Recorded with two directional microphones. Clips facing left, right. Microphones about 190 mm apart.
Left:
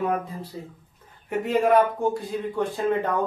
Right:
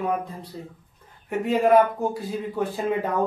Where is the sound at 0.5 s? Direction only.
Centre (ahead or behind).